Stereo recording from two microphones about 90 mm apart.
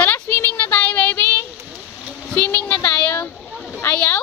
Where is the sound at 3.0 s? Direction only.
20° left (ahead or behind).